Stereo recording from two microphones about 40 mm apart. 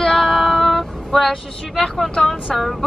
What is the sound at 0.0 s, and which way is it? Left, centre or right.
Female singing, centre.